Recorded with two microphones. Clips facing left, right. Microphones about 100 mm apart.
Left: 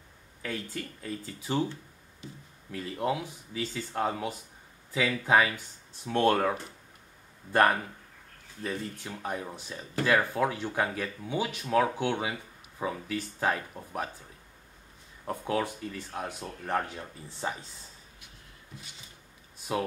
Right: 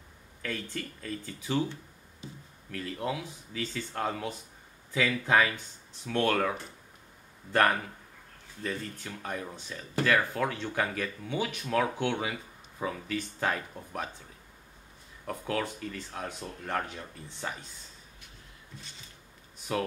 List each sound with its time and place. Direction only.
0.4 s speech: 15° left (ahead or behind)
2.7 s speech: 20° left (ahead or behind)
6.0 s speech: 20° left (ahead or behind)
7.5 s speech: 15° left (ahead or behind)
15.2 s speech: 15° left (ahead or behind)